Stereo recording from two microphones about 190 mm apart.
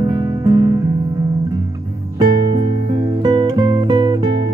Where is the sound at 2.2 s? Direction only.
20° right (ahead or behind).